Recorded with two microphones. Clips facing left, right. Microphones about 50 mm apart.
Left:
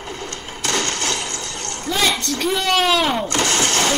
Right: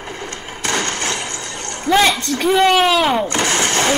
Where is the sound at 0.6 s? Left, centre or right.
Right.